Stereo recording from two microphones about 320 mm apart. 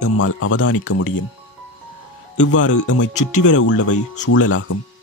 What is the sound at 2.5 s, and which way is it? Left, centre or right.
Speech, left.